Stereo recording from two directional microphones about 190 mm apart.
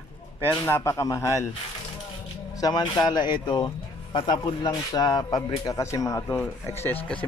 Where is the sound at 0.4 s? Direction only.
10° left (ahead or behind).